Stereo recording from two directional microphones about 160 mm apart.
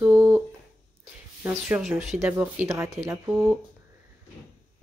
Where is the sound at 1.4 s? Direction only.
10° right (ahead or behind).